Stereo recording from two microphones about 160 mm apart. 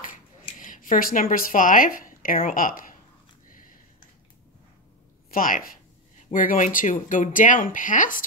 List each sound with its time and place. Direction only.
0.6 s speech: 55° left (ahead or behind)
3.4 s a sound: 55° left (ahead or behind)
5.3 s speech: 60° left (ahead or behind)